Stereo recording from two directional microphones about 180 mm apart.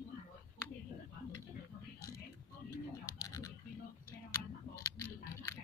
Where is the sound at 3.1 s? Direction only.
20° left (ahead or behind).